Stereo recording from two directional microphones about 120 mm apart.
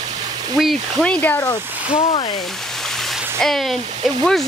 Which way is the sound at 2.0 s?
50° left (ahead or behind).